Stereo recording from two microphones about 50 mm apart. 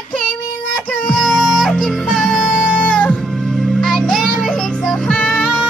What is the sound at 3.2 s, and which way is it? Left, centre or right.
Music, centre.